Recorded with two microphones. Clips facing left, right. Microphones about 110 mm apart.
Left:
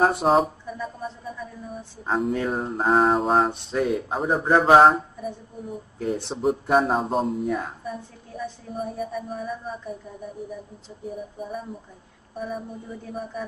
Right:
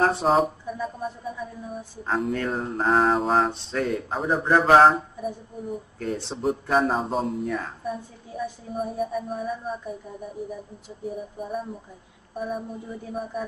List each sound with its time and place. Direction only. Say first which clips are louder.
0.0 s speech: left 1 dB; 5° left (ahead or behind)
11.1 s speech: right 1 dB; centre (ahead or behind)